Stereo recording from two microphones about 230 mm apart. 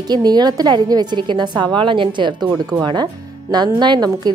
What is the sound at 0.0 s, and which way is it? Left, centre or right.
A woman's voice, centre.